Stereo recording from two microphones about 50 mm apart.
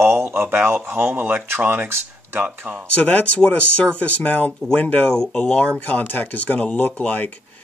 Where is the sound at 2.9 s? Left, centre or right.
Left.